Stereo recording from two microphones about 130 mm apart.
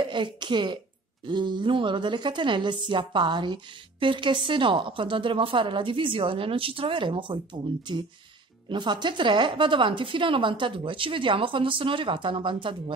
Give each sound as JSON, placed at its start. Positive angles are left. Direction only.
{"t": 0.0, "sound": "speech", "side_deg": -35}